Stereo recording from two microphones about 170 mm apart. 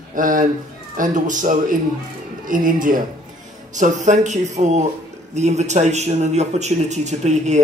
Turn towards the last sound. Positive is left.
turn(degrees=-45)  # may be behind; listen again after turning